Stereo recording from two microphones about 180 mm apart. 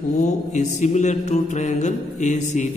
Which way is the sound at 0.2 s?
40° left (ahead or behind).